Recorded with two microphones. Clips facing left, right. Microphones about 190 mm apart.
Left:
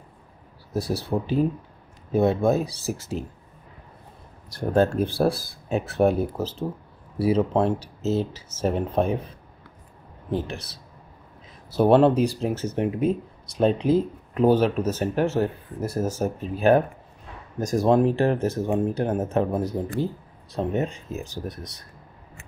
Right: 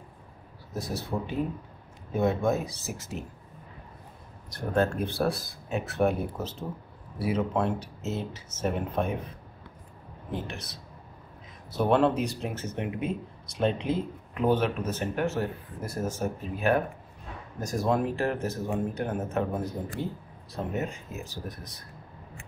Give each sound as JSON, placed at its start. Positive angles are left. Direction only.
{"t": 0.7, "sound": "speech", "side_deg": 35}
{"t": 4.5, "sound": "speech", "side_deg": 30}
{"t": 10.3, "sound": "speech", "side_deg": 30}
{"t": 17.8, "sound": "speech", "side_deg": 30}